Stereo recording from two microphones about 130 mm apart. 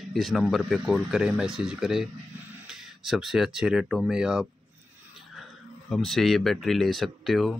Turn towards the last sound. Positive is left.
turn(degrees=0)  # may be behind; listen again after turning